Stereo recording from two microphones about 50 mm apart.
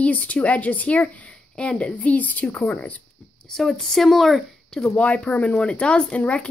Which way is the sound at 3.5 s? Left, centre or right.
Centre.